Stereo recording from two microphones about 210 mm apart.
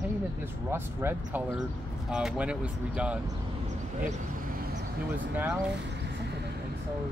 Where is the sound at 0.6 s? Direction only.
10° right (ahead or behind).